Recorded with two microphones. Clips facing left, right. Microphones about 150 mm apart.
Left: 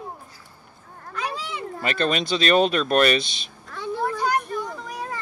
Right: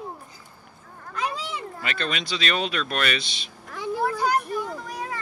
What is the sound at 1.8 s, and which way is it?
Speech, 45° left (ahead or behind).